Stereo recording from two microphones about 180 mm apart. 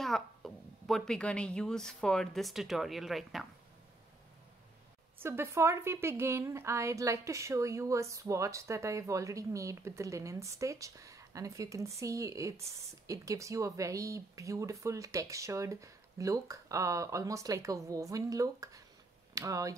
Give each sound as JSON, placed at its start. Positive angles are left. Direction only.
{"t": 0.0, "sound": "a woman's voice", "side_deg": 0}
{"t": 5.2, "sound": "a woman's voice", "side_deg": -15}